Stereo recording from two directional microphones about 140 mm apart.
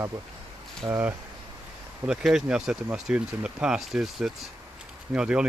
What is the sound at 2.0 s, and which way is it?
Speech, 5° right (ahead or behind).